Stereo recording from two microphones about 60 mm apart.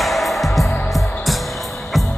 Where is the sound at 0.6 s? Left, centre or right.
Left.